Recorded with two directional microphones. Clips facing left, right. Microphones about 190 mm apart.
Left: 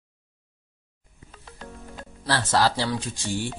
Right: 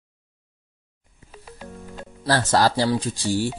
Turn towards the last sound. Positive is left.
turn(degrees=-35)  # may be behind; listen again after turning